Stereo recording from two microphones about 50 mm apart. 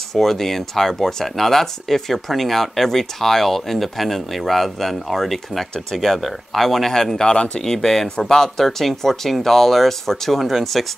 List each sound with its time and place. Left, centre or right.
0.1 s speech: centre